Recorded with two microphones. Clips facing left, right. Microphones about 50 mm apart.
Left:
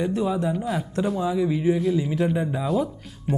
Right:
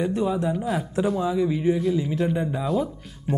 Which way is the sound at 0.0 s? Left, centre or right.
Centre.